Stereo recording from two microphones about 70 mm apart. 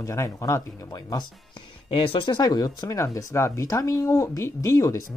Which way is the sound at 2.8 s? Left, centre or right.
Left.